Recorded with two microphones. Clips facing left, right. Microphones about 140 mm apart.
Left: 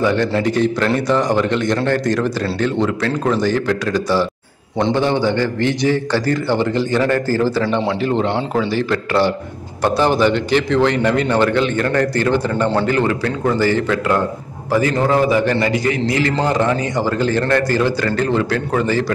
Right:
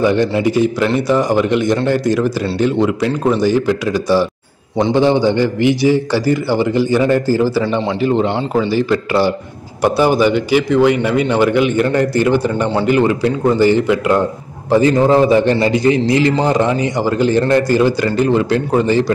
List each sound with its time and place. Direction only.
0.0 s a man's voice: 15° right (ahead or behind)